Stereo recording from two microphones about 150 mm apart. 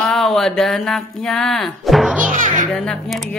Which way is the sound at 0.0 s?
Centre (ahead or behind).